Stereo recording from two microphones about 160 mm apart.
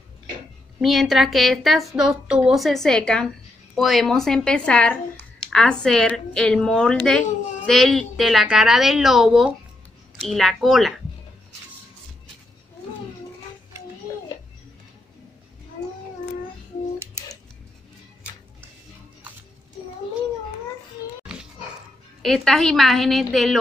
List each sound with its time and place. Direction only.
0.7 s speech: centre (ahead or behind)
13.7 s music: 15° right (ahead or behind)
22.2 s speech: 5° left (ahead or behind)